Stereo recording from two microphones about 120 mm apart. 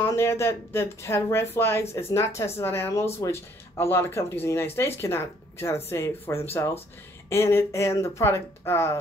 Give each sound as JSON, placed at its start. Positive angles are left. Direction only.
{"t": 0.0, "sound": "speech", "side_deg": 20}